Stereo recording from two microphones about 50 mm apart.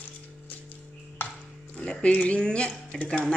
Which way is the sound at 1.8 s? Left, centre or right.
Left.